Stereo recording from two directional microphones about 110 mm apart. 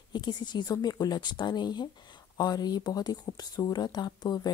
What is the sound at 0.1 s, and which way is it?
Speech, 40° left (ahead or behind).